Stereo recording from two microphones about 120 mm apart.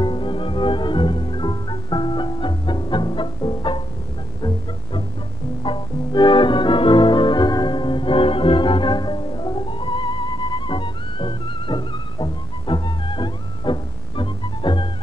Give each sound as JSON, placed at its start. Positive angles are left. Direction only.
{"t": 0.0, "sound": "music", "side_deg": 40}
{"t": 5.6, "sound": "music", "side_deg": 40}